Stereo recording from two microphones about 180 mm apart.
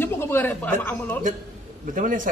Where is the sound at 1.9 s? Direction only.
50° right (ahead or behind).